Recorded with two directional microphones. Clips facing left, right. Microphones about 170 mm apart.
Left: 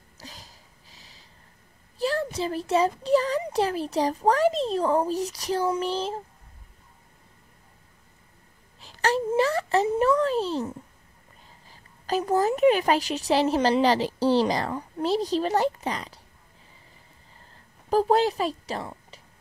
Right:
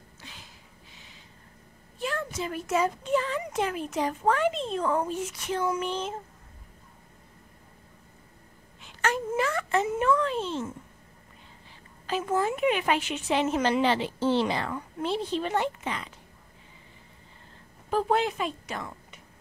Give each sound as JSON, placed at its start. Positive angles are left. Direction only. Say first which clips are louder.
{"t": 0.2, "sound": "a sound", "louder": "left 4 dB", "side_deg": 40}
{"t": 2.0, "sound": "a child's voice", "louder": "left 5 dB", "side_deg": 35}
{"t": 8.8, "sound": "a child's voice", "louder": "left 4 dB", "side_deg": 35}
{"t": 12.1, "sound": "a child's voice", "louder": "left 4 dB", "side_deg": 40}
{"t": 17.8, "sound": "a woman's voice", "louder": "left 4 dB", "side_deg": 35}